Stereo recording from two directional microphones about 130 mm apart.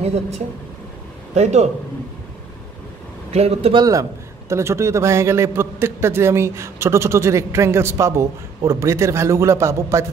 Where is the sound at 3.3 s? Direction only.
50° right (ahead or behind).